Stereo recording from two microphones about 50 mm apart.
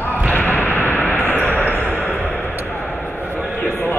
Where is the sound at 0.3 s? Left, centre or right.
Left.